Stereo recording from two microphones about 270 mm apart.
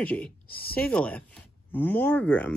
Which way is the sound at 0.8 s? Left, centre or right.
Centre.